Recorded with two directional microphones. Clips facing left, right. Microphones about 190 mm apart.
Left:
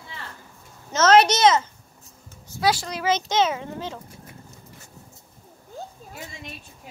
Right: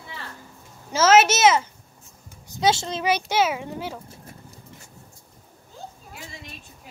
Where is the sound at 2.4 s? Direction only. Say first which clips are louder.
Right 1 dB; 20° right (ahead or behind).